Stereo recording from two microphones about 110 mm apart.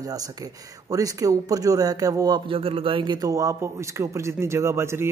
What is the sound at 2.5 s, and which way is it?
Speech, 55° right (ahead or behind).